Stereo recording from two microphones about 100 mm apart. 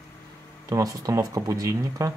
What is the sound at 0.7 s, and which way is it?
Speech, 35° right (ahead or behind).